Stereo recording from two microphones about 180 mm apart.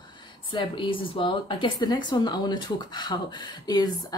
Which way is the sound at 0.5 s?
25° left (ahead or behind).